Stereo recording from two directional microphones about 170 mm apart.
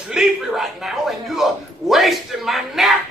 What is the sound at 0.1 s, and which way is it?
Speech, 5° right (ahead or behind).